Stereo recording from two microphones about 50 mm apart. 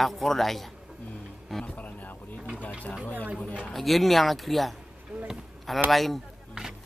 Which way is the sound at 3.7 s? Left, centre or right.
Centre.